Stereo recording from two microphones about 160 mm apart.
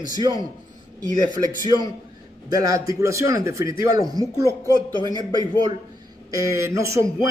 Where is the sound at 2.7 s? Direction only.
20° right (ahead or behind).